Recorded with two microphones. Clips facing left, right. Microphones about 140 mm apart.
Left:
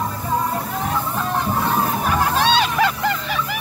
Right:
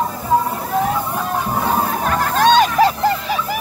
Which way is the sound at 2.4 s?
45° right (ahead or behind).